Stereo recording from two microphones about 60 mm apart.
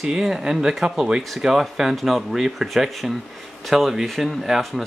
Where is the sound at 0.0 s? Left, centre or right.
Centre.